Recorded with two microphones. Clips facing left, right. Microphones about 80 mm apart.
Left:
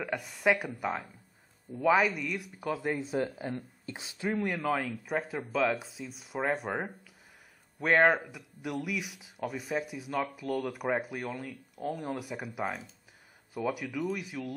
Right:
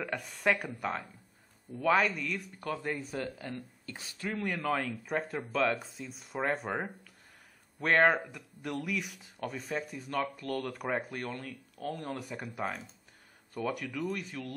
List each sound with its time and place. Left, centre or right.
0.0 s speech: centre
4.5 s speech: centre